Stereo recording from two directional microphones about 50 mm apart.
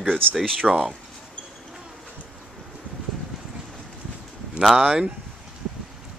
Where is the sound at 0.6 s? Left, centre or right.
Centre.